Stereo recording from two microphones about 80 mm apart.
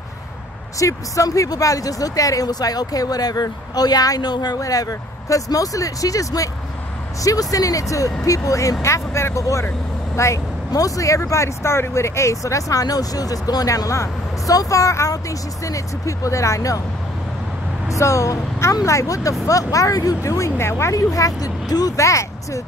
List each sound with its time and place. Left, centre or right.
0.7 s speech: left
17.8 s speech: left